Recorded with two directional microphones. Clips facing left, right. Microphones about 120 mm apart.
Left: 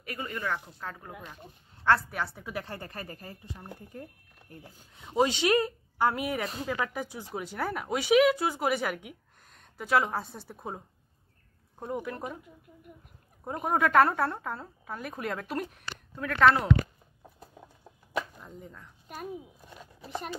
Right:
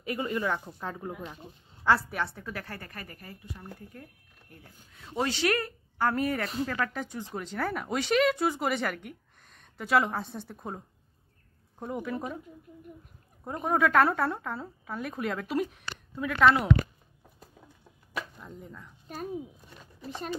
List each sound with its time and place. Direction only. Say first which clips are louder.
0.0 s speech: right 5 dB; 20° right (ahead or behind)
1.8 s a woman's voice: even; 5° right (ahead or behind)
2.4 s speech: left 2 dB; 20° left (ahead or behind); by 10.8 s 5° left (ahead or behind)
11.8 s a woman's voice: right 1 dB; centre (ahead or behind)
13.4 s a woman's voice: right 1 dB; 5° left (ahead or behind)
18.4 s speech: right 1 dB; centre (ahead or behind)